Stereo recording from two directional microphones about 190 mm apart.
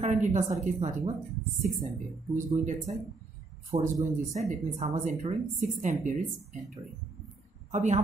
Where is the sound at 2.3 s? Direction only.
40° right (ahead or behind).